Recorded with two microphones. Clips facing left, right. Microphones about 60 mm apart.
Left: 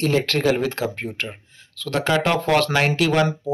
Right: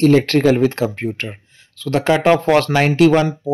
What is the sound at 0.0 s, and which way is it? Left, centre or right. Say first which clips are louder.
Speech: right 8 dB; right.